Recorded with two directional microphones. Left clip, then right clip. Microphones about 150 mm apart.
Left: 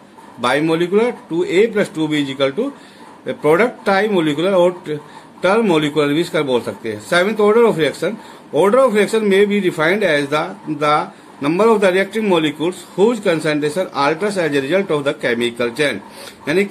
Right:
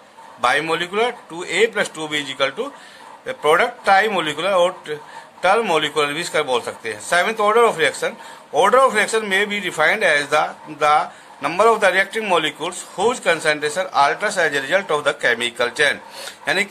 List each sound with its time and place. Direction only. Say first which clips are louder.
0.4 s speech: left 2 dB; 30° right (ahead or behind)